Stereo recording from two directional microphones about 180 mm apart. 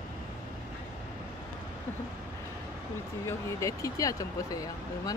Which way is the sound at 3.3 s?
20° left (ahead or behind).